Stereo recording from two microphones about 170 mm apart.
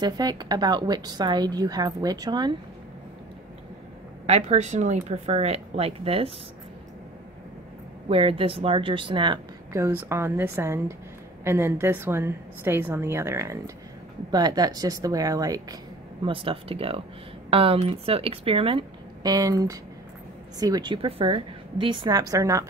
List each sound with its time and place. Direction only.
0.0 s a woman's voice: 25° right (ahead or behind)
4.3 s speech: 40° right (ahead or behind)
8.1 s a woman's voice: 30° right (ahead or behind)
16.3 s a woman's voice: 30° right (ahead or behind)